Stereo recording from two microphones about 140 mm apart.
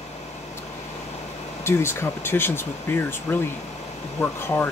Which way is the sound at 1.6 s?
15° left (ahead or behind).